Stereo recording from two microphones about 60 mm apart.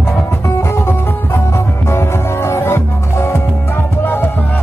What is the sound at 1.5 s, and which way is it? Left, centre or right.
Music, left.